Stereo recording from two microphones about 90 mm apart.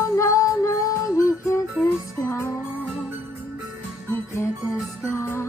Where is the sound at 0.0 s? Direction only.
35° left (ahead or behind).